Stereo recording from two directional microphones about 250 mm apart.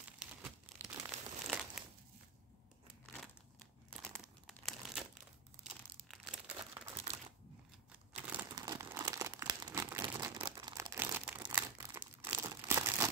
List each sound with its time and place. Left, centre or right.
0.2 s crumpling: centre
4.0 s crumpling: centre
7.1 s crumpling: right
8.3 s crumpling: centre